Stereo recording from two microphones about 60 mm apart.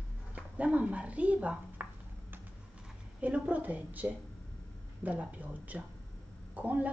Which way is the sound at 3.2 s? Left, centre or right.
Right.